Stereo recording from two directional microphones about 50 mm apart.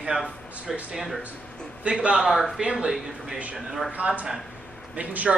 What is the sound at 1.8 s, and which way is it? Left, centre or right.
Speech, right.